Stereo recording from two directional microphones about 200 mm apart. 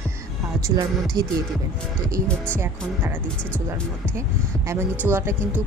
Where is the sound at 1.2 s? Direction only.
15° right (ahead or behind).